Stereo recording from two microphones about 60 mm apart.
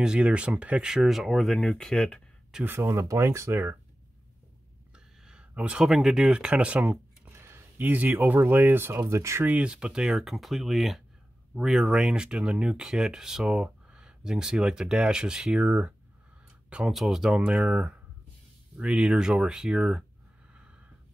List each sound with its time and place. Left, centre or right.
0.0 s speech: centre
2.8 s speech: right
4.9 s a sound: centre
5.5 s speech: right
5.8 s speech: centre; by 7.0 s right
7.3 s a sound: right
7.8 s speech: right
9.0 s speech: right
9.4 s speech: right
9.7 s speech: centre
16.9 s speech: centre
17.4 s speech: centre